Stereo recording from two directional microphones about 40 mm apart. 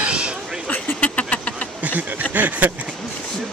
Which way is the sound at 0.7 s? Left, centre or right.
Left.